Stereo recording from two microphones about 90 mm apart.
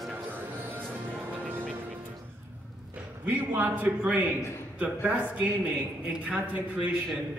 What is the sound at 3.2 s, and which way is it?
A man's voice, 20° right (ahead or behind).